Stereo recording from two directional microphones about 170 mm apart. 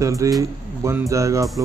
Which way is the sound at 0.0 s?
20° right (ahead or behind).